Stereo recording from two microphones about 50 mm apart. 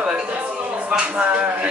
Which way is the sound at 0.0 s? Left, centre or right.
Right.